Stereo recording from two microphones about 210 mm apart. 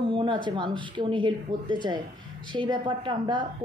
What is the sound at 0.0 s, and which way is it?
A woman's voice, 25° right (ahead or behind).